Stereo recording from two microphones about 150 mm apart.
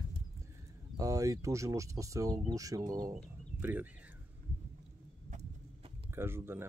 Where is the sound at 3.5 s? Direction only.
15° right (ahead or behind).